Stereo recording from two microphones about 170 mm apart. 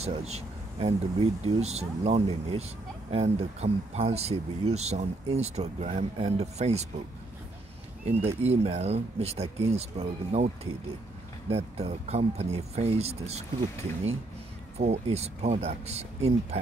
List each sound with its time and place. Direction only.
0.0 s speech: 40° right (ahead or behind)
8.3 s speech: 35° right (ahead or behind)
14.8 s speech: 40° right (ahead or behind)